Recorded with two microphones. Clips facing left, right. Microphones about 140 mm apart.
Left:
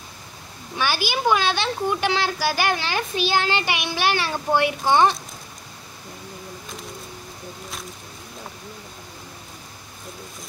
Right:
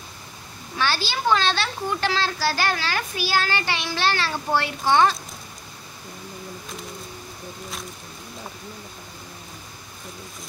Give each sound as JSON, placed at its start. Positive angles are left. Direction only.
{"t": 0.7, "sound": "a woman's voice", "side_deg": 15}